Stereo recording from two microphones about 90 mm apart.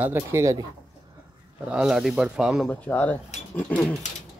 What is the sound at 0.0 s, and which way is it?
Speech, 30° right (ahead or behind).